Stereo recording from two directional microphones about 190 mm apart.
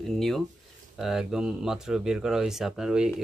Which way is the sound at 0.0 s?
Centre (ahead or behind).